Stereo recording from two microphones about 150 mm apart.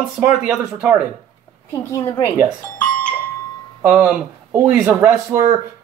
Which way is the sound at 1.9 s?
20° left (ahead or behind).